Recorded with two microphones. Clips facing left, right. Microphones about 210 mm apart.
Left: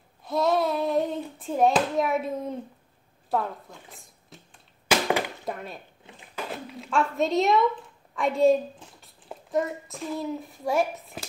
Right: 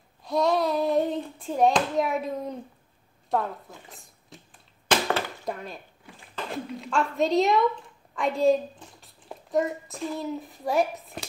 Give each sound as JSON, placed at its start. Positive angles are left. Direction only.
{"t": 0.2, "sound": "hands", "side_deg": 0}
{"t": 3.3, "sound": "speech", "side_deg": 0}
{"t": 4.8, "sound": "a sound", "side_deg": 15}
{"t": 5.4, "sound": "a child's voice", "side_deg": 0}